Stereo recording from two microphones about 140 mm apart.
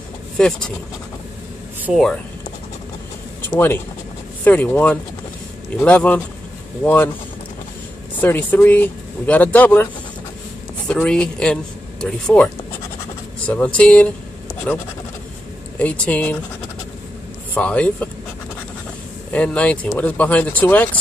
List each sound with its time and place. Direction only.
0.4 s speech: 5° left (ahead or behind)
1.9 s speech: centre (ahead or behind)
3.4 s speech: 15° left (ahead or behind)
8.2 s speech: 15° left (ahead or behind)
10.9 s speech: 10° left (ahead or behind)
13.5 s speech: 10° left (ahead or behind)
17.6 s speech: 10° left (ahead or behind)
19.3 s speech: 10° left (ahead or behind)